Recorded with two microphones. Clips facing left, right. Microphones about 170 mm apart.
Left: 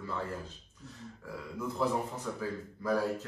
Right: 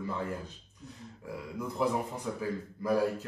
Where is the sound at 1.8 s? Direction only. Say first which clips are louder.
Right 2 dB; 15° right (ahead or behind).